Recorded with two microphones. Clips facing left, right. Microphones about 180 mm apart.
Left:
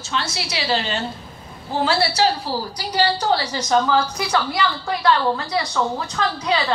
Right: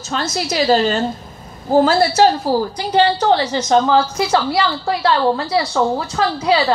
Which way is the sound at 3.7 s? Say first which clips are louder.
Right 4 dB; 30° right (ahead or behind).